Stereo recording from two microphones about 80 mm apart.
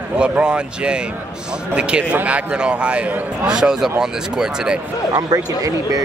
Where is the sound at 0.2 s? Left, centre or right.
Centre.